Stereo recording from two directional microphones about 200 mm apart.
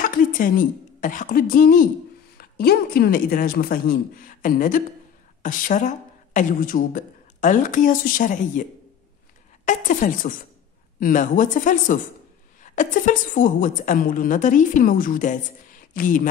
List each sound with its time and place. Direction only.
0.0 s a woman's voice: 40° left (ahead or behind)
9.7 s a woman's voice: 40° left (ahead or behind)